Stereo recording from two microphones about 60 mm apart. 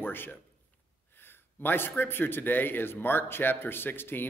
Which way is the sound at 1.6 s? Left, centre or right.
Left.